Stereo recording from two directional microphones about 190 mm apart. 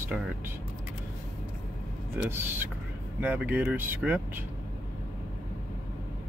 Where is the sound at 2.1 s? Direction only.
10° right (ahead or behind).